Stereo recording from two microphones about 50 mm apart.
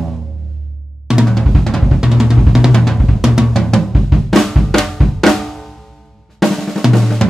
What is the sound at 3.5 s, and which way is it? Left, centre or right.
Drum, centre.